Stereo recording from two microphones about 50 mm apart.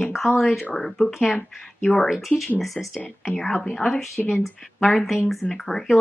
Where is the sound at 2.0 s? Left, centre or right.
Centre.